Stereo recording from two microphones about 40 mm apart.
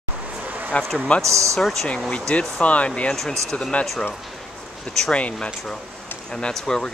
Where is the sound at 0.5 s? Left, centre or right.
Right.